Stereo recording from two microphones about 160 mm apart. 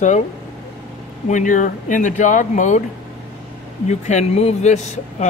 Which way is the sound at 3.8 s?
45° left (ahead or behind).